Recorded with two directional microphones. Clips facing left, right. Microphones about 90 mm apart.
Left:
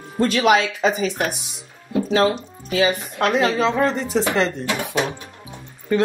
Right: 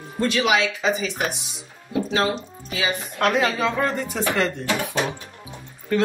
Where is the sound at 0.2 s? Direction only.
45° left (ahead or behind).